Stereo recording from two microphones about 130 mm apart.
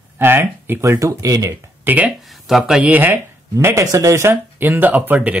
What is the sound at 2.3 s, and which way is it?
Speech, centre (ahead or behind).